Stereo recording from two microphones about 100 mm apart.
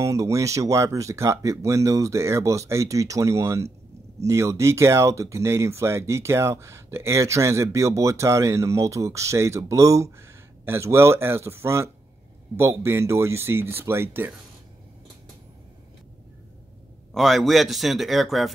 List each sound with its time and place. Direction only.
0.0 s speech: 30° right (ahead or behind)
17.1 s a man's voice: centre (ahead or behind)